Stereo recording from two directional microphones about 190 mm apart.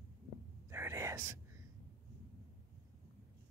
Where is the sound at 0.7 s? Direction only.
15° right (ahead or behind).